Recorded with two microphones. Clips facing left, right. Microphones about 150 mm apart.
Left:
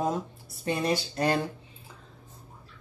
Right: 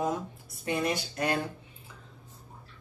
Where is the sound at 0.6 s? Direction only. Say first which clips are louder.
Left 2 dB; 30° left (ahead or behind).